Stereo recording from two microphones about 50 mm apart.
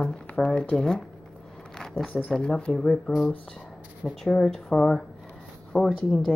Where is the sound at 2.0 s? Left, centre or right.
Centre.